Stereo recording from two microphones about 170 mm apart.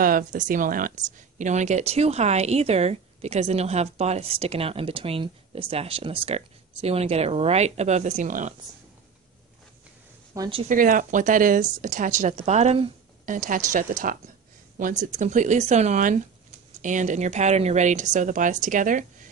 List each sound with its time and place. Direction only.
0.0 s speech: 50° right (ahead or behind)
10.3 s speech: 25° right (ahead or behind)
10.7 s speech: 55° right (ahead or behind); by 12.9 s 35° right (ahead or behind)
13.2 s speech: 50° right (ahead or behind)